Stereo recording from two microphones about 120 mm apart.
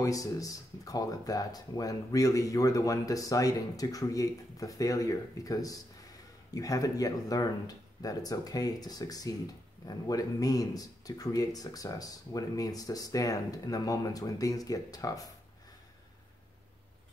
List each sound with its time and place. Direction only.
0.0 s speech: 30° left (ahead or behind)